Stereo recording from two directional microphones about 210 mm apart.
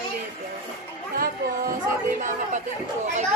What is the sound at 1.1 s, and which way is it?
Speech, 40° right (ahead or behind).